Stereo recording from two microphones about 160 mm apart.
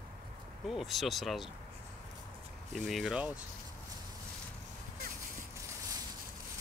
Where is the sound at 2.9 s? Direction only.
Centre (ahead or behind).